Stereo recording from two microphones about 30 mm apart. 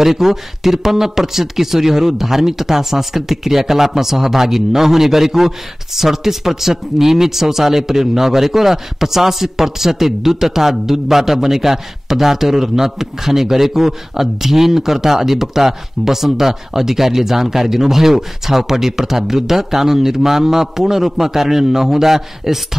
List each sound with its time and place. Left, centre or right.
0.0 s speech: centre